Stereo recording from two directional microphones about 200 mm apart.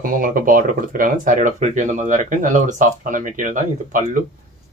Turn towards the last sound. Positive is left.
turn(degrees=-40)  # may be behind; listen again after turning